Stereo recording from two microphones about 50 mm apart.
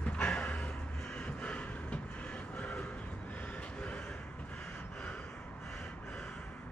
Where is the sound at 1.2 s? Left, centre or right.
Left.